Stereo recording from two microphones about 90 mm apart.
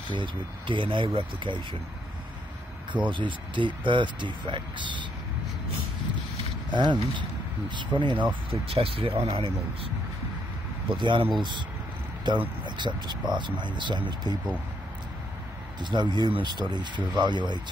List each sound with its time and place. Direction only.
0.1 s speech: 65° right (ahead or behind)
2.9 s speech: 65° right (ahead or behind)
6.7 s speech: 60° right (ahead or behind)
8.6 s speech: 90° right
10.9 s speech: 65° right (ahead or behind)
12.3 s speech: 55° right (ahead or behind)
15.8 s speech: 60° right (ahead or behind)